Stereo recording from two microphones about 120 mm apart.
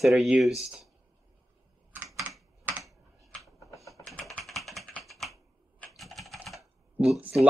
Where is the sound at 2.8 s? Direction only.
Centre (ahead or behind).